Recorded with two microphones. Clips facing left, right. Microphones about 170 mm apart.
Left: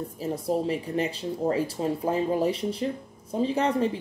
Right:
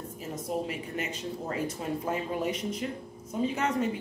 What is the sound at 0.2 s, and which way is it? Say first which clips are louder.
Speech: left 6 dB; 35° left (ahead or behind).